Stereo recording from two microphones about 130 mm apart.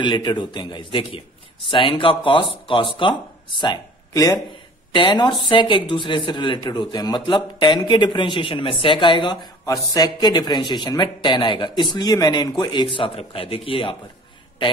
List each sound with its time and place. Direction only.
0.0 s a man's voice: 35° left (ahead or behind)